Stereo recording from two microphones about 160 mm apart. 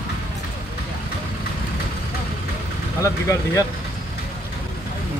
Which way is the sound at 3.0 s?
20° left (ahead or behind).